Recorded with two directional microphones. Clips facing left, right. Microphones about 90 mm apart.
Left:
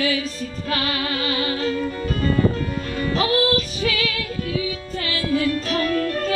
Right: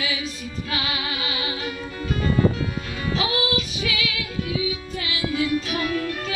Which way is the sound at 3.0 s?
40° left (ahead or behind).